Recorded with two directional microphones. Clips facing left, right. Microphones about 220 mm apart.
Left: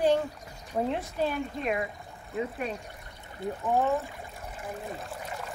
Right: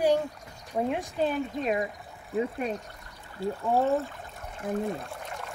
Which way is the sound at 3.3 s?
15° left (ahead or behind).